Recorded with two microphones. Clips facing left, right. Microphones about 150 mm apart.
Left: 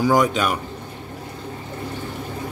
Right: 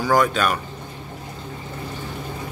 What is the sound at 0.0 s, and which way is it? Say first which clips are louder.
Speech: left 1 dB; 15° left (ahead or behind).